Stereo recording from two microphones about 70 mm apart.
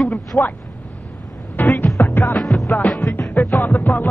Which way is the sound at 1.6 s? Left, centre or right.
Left.